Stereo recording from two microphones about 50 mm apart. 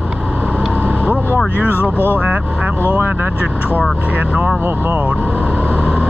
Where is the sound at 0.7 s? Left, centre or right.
Right.